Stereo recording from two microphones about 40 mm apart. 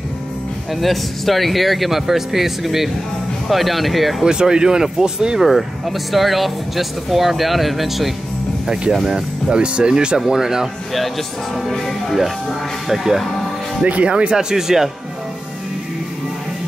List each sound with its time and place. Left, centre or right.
0.7 s speech: centre
4.2 s speech: centre
5.4 s speech: centre
8.9 s speech: centre
12.8 s speech: centre
13.8 s speech: right
14.3 s speech: centre